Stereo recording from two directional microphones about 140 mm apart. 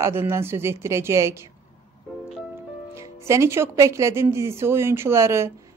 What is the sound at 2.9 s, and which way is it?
Speech, 20° right (ahead or behind).